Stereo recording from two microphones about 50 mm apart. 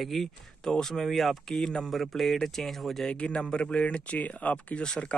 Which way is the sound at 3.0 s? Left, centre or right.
Left.